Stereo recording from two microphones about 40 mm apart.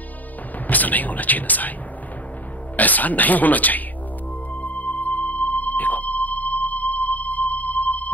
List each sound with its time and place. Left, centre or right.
0.7 s speech: left
2.7 s speech: left
4.6 s music: left